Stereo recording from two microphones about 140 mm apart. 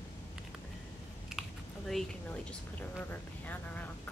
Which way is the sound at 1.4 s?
Centre (ahead or behind).